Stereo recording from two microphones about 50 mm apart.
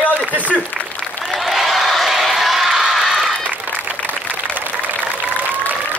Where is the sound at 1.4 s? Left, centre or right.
Centre.